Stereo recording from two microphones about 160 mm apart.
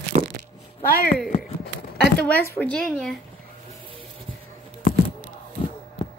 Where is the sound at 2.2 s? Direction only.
10° left (ahead or behind).